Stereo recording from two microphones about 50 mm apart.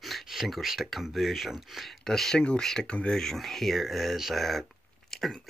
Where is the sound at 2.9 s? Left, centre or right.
Left.